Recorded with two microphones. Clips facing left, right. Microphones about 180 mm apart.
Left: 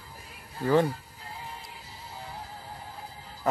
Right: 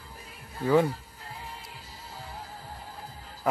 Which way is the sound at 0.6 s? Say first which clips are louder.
Right 1 dB; 5° right (ahead or behind).